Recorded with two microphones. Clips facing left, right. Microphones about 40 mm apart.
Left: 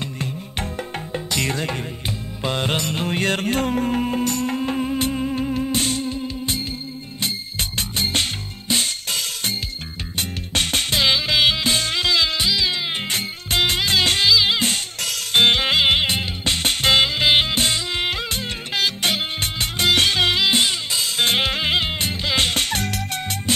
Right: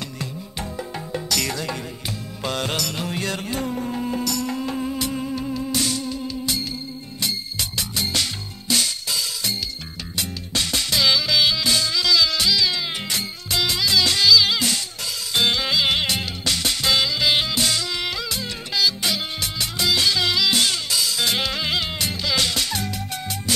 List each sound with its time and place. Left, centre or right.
1.1 s music: left
1.5 s music: left
2.4 s music: left
9.0 s music: left
12.4 s music: left
13.1 s music: left
15.0 s music: left
15.9 s music: left
21.0 s music: left